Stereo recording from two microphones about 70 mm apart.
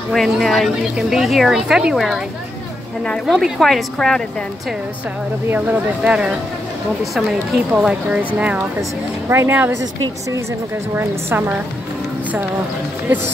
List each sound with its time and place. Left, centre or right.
0.1 s a woman's voice: centre
3.3 s a woman's voice: centre
5.5 s speech: right
7.7 s speech: centre
9.3 s speech: right
11.0 s speech: right